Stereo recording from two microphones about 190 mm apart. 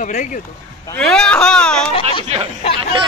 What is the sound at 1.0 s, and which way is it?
Speech, 5° left (ahead or behind).